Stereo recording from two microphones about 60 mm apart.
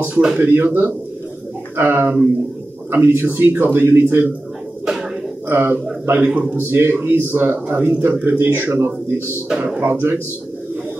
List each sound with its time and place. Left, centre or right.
0.1 s a man's voice: centre
0.4 s a man's voice: right
5.5 s a man's voice: right